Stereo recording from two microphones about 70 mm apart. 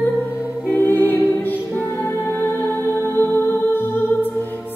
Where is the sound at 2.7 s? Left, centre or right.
Left.